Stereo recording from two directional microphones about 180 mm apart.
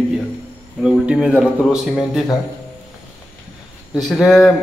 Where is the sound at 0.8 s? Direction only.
5° right (ahead or behind).